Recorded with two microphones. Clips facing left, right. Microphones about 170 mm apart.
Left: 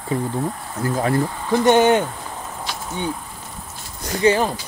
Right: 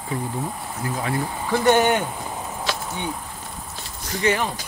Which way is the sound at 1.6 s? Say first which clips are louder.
Left 3 dB; 20° left (ahead or behind).